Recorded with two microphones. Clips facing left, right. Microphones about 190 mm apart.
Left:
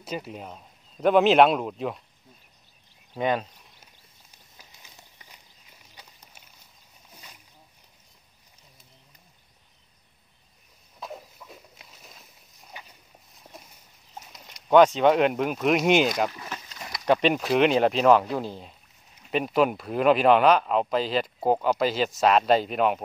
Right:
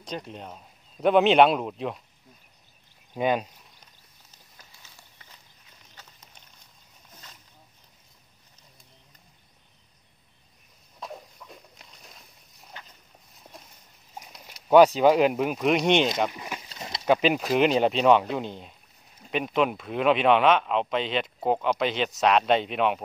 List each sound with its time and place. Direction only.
0.0 s a man's voice: 5° left (ahead or behind)
3.2 s speech: 10° right (ahead or behind)
4.6 s a sound: 15° left (ahead or behind)
7.1 s boat: 10° left (ahead or behind)
11.0 s a sound: centre (ahead or behind)
14.3 s speech: 5° right (ahead or behind)
16.3 s speech: 15° right (ahead or behind)
16.6 s a sound: 25° right (ahead or behind)
17.0 s a man's voice: 5° right (ahead or behind)